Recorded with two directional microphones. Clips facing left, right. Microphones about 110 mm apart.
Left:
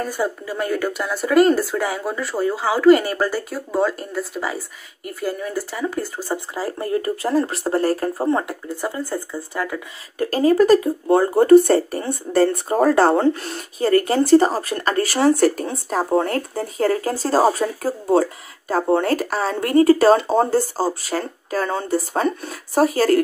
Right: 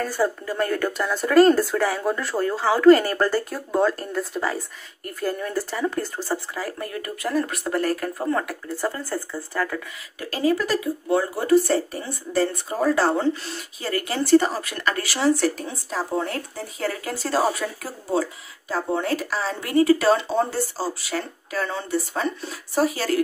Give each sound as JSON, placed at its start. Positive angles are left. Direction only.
{"t": 0.0, "sound": "speech", "side_deg": 15}
{"t": 6.5, "sound": "speech", "side_deg": 30}
{"t": 10.1, "sound": "speech", "side_deg": 40}